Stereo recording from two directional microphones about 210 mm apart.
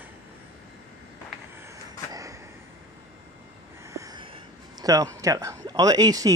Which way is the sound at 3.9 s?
15° right (ahead or behind).